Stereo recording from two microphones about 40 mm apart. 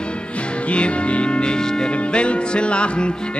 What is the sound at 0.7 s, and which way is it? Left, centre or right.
Music, left.